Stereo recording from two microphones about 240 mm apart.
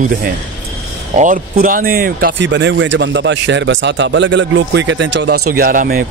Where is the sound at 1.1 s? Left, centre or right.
Right.